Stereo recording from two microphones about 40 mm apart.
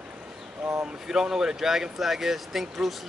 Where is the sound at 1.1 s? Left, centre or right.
Centre.